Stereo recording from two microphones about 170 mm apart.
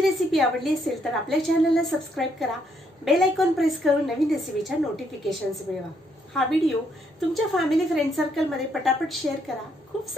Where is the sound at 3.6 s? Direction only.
Centre (ahead or behind).